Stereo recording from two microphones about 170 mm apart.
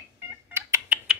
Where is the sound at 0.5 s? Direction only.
10° right (ahead or behind).